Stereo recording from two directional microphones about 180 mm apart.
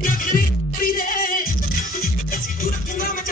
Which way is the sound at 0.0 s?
50° left (ahead or behind).